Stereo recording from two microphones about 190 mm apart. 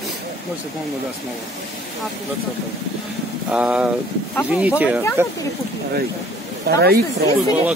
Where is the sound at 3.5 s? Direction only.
5° right (ahead or behind).